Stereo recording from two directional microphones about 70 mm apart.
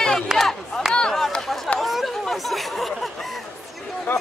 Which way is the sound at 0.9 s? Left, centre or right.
Centre.